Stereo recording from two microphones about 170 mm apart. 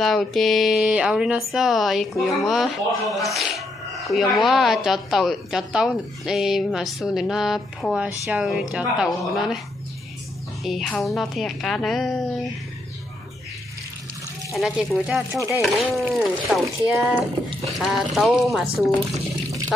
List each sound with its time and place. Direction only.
0.0 s a woman's voice: centre (ahead or behind)
10.6 s a woman's voice: centre (ahead or behind)
14.5 s a woman's voice: centre (ahead or behind)
16.6 s speech: 15° right (ahead or behind)
17.7 s a woman's voice: centre (ahead or behind)